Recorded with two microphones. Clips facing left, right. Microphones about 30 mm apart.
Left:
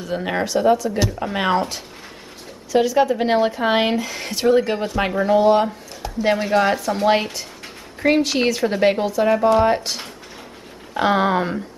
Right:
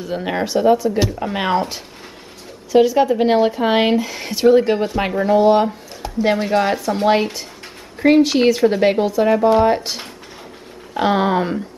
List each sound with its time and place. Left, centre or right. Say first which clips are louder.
0.0 s speech: right 1 dB; centre
0.8 s speech: right 3 dB; centre
1.2 s speech: right 1 dB; centre
8.0 s speech: right 5 dB; centre